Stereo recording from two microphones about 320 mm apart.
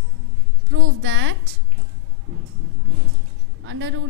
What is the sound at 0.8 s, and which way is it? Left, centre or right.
Speech, right.